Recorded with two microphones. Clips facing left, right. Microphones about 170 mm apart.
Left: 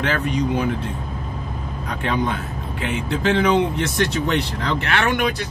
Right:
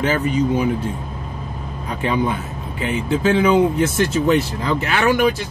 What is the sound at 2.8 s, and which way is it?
Speech, 5° right (ahead or behind).